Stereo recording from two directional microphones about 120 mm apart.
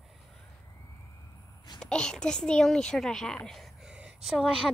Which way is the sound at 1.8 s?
5° left (ahead or behind).